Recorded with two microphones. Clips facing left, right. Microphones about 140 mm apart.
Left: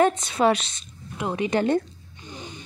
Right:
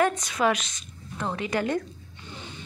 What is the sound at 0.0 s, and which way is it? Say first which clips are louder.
Speech: left 4 dB; 25° left (ahead or behind).